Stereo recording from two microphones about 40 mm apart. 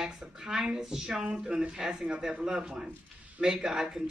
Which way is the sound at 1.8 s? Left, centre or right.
Centre.